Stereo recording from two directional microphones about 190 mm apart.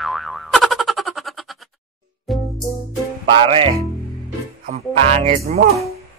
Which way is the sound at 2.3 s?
Centre (ahead or behind).